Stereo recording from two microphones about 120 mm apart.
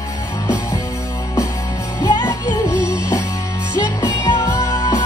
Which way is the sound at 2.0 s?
35° left (ahead or behind).